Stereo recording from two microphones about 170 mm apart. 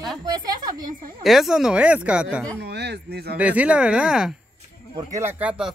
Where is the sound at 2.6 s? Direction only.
75° right (ahead or behind).